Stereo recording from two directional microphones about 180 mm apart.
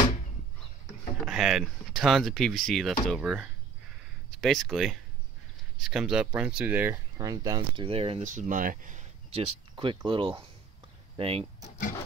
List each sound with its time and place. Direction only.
1.2 s speech: centre (ahead or behind)
7.2 s speech: 20° right (ahead or behind)
8.3 s speech: 45° right (ahead or behind)
9.3 s speech: 30° right (ahead or behind)